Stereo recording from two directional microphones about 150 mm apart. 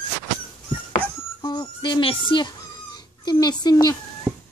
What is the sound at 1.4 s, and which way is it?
Speech, 30° left (ahead or behind).